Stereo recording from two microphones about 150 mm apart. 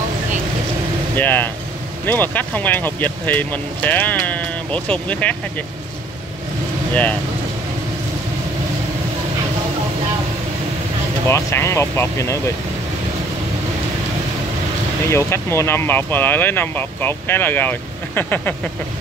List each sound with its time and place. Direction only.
1.1 s speech: 10° left (ahead or behind)
6.9 s speech: 10° left (ahead or behind)
11.2 s speech: 20° left (ahead or behind)
15.0 s speech: 15° left (ahead or behind)